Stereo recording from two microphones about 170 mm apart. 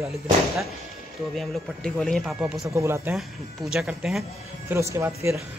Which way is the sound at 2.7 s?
15° right (ahead or behind).